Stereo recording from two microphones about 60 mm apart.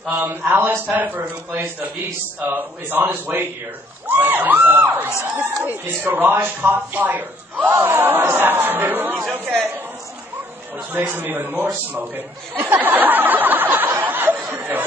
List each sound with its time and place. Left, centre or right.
0.2 s a man's voice: right
10.9 s speech: right
12.5 s a sound: right